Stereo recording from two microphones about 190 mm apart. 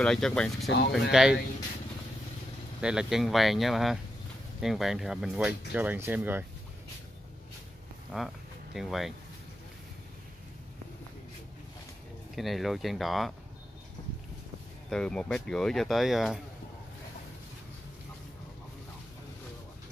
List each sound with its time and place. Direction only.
0.0 s speech: 5° left (ahead or behind)
0.7 s speech: 60° left (ahead or behind)
1.1 s speech: 5° right (ahead or behind)
2.8 s speech: 5° right (ahead or behind)
8.1 s speech: centre (ahead or behind)
12.4 s speech: centre (ahead or behind)
14.9 s speech: 5° left (ahead or behind)